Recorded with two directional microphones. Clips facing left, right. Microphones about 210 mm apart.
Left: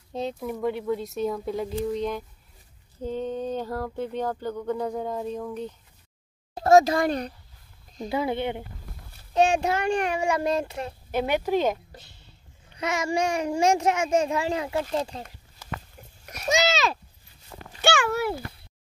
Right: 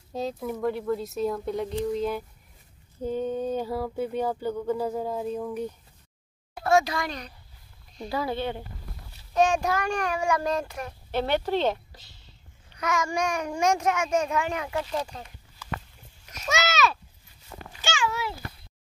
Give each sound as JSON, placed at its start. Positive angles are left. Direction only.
{"t": 0.1, "sound": "speech", "side_deg": 0}
{"t": 3.0, "sound": "a sound", "side_deg": -10}
{"t": 6.5, "sound": "speech", "side_deg": 40}
{"t": 8.1, "sound": "a child's voice", "side_deg": 20}
{"t": 11.1, "sound": "speech", "side_deg": 10}
{"t": 12.7, "sound": "a child's voice", "side_deg": 25}
{"t": 16.4, "sound": "speech", "side_deg": 30}
{"t": 17.8, "sound": "a child's voice", "side_deg": 60}